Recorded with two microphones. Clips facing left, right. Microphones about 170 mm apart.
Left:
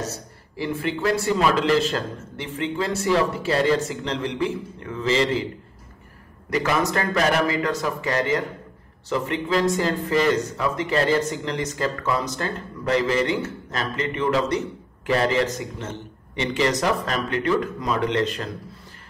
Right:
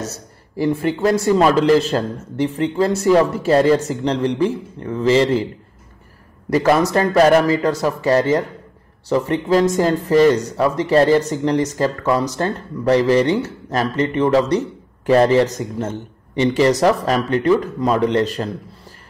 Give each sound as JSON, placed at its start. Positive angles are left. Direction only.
{"t": 0.6, "sound": "speech", "side_deg": -45}
{"t": 6.5, "sound": "speech", "side_deg": -35}